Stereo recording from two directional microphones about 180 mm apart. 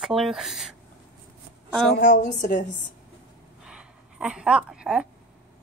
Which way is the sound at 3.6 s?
5° right (ahead or behind).